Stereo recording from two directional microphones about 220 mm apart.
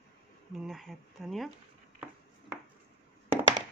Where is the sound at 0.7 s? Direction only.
Centre (ahead or behind).